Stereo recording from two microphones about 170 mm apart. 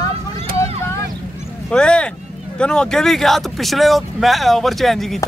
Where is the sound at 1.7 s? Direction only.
5° left (ahead or behind).